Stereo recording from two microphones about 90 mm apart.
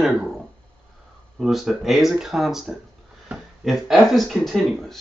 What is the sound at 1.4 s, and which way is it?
Speech, 5° right (ahead or behind).